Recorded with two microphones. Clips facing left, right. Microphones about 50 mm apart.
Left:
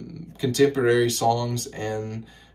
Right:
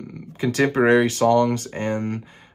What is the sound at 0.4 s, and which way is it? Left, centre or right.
Speech, right.